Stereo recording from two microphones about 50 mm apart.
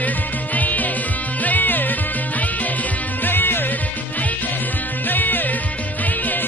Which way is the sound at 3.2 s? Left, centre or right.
Left.